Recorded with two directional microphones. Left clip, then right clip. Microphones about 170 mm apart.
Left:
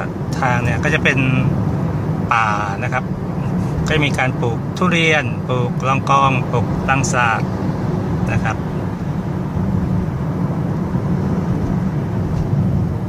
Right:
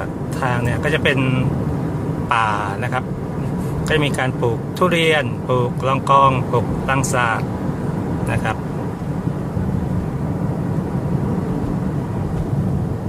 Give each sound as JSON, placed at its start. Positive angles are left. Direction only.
{"t": 0.4, "sound": "speech", "side_deg": -10}
{"t": 2.2, "sound": "speech", "side_deg": -15}
{"t": 3.9, "sound": "speech", "side_deg": -10}